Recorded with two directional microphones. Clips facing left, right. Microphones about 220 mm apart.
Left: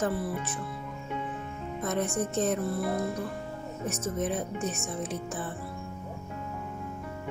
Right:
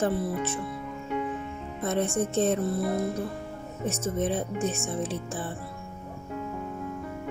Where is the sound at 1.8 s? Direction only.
30° right (ahead or behind).